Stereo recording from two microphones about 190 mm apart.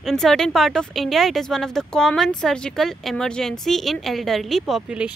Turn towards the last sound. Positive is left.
turn(degrees=0)  # may be behind; listen again after turning